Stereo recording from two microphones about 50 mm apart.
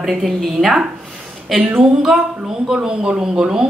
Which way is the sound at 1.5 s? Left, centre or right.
Centre.